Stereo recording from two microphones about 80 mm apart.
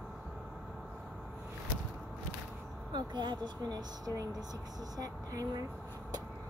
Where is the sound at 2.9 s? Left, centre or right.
Right.